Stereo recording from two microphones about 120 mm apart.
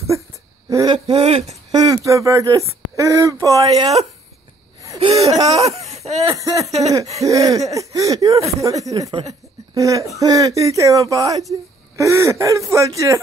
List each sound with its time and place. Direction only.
0.8 s speech: 50° right (ahead or behind)
1.7 s speech: 30° right (ahead or behind)
4.9 s speech: 55° right (ahead or behind)
5.3 s a sound: 35° right (ahead or behind)
5.6 s a sound: 60° right (ahead or behind)
6.3 s speech: 25° right (ahead or behind)